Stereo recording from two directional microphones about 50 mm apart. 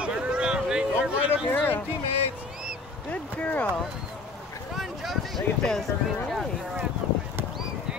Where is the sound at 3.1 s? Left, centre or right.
Left.